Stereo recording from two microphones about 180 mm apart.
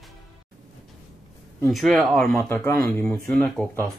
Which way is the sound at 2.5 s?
10° left (ahead or behind).